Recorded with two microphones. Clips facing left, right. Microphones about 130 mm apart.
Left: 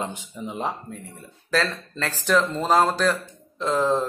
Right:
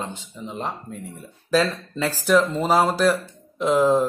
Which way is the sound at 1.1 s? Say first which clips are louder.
Right 4 dB; 15° right (ahead or behind).